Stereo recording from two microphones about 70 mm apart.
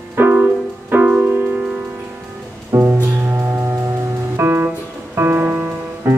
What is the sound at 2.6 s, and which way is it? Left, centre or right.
Music, right.